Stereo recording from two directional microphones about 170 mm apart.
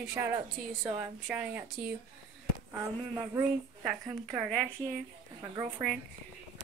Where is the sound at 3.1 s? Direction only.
15° right (ahead or behind).